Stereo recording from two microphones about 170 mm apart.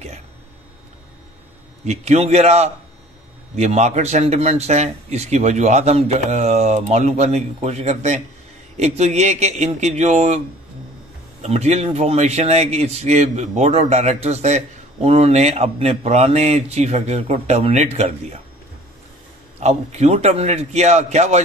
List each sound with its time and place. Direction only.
1.9 s speech: 40° right (ahead or behind)
11.4 s speech: 40° right (ahead or behind)
19.6 s speech: 40° right (ahead or behind)